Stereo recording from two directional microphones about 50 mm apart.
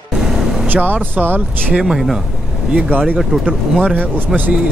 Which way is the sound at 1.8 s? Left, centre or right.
Centre.